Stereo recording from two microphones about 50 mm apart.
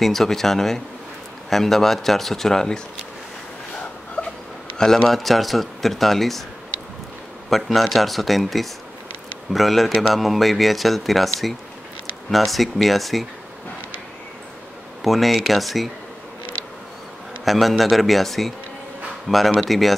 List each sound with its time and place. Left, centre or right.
0.0 s speech: centre
4.2 s a sound: left
4.7 s speech: centre
5.1 s speech: centre
7.4 s speech: centre
15.0 s speech: centre
17.5 s speech: centre